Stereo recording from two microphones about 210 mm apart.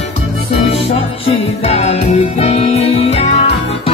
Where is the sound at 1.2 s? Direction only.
30° left (ahead or behind).